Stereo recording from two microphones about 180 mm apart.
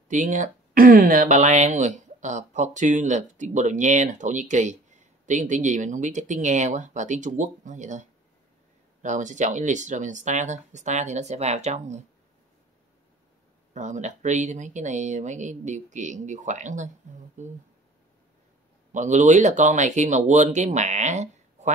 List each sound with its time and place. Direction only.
0.1 s speech: 45° right (ahead or behind)
13.7 s speech: 40° right (ahead or behind)
18.9 s speech: 45° right (ahead or behind)